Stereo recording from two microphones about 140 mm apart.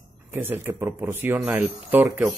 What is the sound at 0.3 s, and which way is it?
Speech, 15° right (ahead or behind).